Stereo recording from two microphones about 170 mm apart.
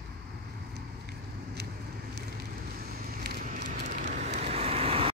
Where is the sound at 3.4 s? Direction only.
45° right (ahead or behind).